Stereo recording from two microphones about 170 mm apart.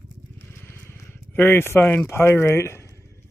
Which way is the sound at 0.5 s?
15° left (ahead or behind).